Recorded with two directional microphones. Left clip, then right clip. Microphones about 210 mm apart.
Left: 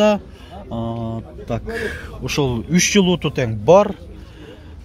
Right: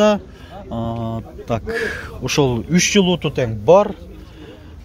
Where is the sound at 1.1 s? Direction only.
25° right (ahead or behind).